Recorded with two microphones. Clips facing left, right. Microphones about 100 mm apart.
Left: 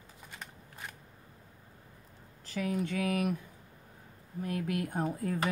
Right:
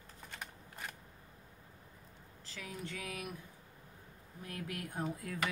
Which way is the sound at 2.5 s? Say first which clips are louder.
Left 12 dB; 60° left (ahead or behind).